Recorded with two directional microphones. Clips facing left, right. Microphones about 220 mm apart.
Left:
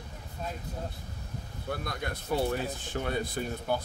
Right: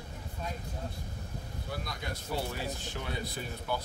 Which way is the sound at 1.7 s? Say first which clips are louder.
Left 4 dB; 55° left (ahead or behind).